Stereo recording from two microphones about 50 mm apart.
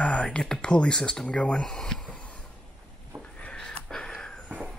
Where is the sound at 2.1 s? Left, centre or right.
Left.